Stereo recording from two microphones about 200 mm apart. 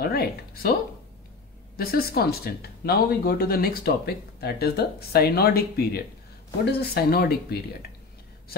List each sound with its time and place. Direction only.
0.0 s speech: 50° left (ahead or behind)
1.8 s speech: 50° left (ahead or behind)